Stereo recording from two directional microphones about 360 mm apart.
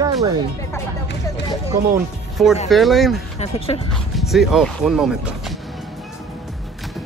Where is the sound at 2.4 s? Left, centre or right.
Centre.